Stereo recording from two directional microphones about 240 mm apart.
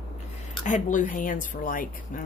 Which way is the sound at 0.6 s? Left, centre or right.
Left.